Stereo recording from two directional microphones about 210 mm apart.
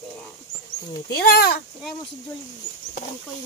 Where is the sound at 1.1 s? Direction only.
45° left (ahead or behind).